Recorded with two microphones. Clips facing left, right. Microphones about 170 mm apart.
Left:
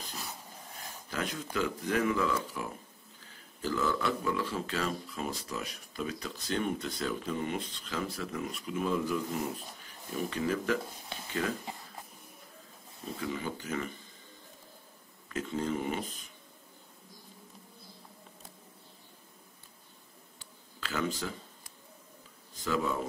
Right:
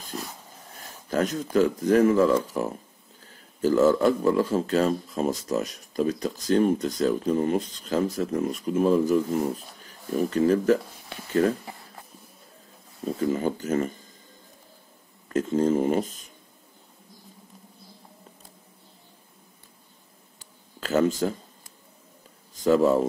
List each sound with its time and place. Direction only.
1.1 s speech: 45° right (ahead or behind)
13.2 s speech: 45° right (ahead or behind)
15.2 s speech: 40° right (ahead or behind)
20.3 s a sound: 45° right (ahead or behind)
22.6 s speech: 40° right (ahead or behind)